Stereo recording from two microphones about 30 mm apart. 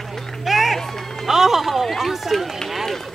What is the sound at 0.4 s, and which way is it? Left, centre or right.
Run, centre.